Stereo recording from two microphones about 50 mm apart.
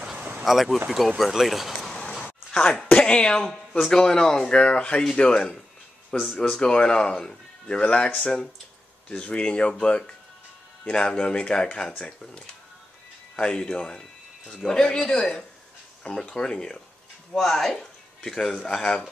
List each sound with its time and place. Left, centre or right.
0.4 s speech: centre
2.0 s a sound: centre
2.5 s speech: centre